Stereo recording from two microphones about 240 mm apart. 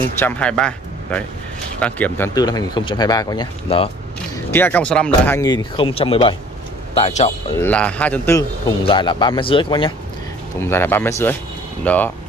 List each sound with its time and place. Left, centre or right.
0.2 s a man's voice: centre; by 3.9 s left
4.5 s a man's voice: centre; by 7.3 s left
7.5 s a man's voice: centre
10.6 s a man's voice: centre